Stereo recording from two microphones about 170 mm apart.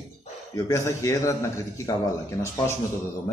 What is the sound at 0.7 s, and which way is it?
Speech, 15° left (ahead or behind).